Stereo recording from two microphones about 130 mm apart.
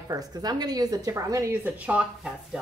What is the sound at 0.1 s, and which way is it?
A woman's voice, 30° right (ahead or behind).